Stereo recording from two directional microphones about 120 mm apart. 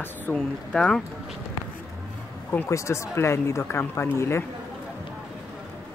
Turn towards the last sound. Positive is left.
turn(degrees=20)  # may be behind; listen again after turning